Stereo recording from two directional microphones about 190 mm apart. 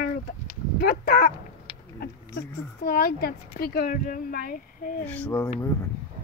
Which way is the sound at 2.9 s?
50° left (ahead or behind).